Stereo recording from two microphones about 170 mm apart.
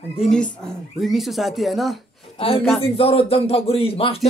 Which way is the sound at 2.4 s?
35° left (ahead or behind).